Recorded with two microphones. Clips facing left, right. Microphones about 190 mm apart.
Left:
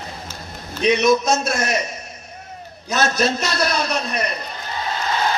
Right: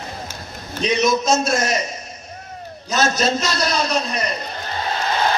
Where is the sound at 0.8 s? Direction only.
55° left (ahead or behind).